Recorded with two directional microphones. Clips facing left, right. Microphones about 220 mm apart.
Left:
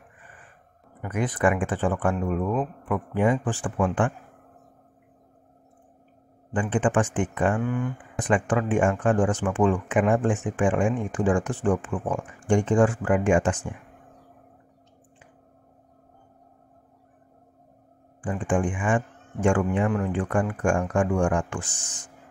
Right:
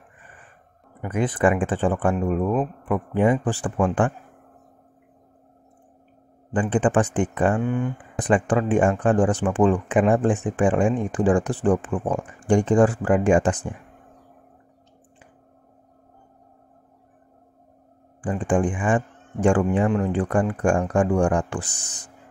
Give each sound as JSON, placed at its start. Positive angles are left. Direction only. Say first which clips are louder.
{"t": 1.0, "sound": "speech", "louder": "right 3 dB", "side_deg": -30}
{"t": 6.5, "sound": "speech", "louder": "right 3 dB", "side_deg": -35}
{"t": 18.2, "sound": "speech", "louder": "right 3 dB", "side_deg": -35}